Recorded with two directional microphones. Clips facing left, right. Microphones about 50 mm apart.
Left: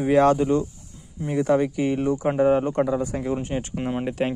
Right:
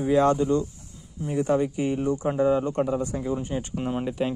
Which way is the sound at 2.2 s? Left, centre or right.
Left.